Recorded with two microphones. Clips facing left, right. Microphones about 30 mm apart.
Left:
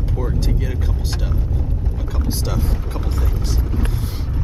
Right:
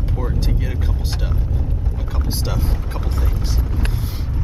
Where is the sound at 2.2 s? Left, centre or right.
Centre.